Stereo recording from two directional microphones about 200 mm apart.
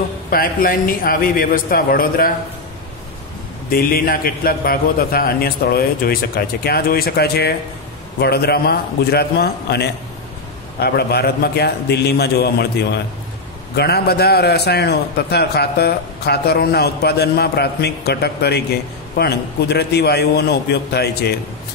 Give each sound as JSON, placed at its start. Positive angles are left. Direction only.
{"t": 0.3, "sound": "a man's voice", "side_deg": 45}
{"t": 3.7, "sound": "a man's voice", "side_deg": 45}